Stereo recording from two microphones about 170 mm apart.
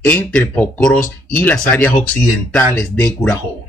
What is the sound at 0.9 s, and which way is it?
Speech, 50° left (ahead or behind).